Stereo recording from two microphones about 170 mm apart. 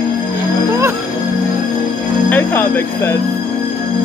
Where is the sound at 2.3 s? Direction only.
10° left (ahead or behind).